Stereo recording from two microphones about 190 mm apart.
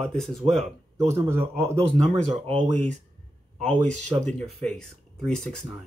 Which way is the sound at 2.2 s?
35° right (ahead or behind).